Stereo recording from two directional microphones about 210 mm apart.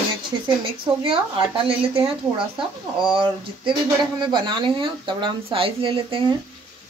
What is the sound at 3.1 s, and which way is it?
Speech, 25° right (ahead or behind).